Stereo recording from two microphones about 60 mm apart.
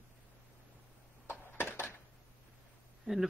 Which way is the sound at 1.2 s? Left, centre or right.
Left.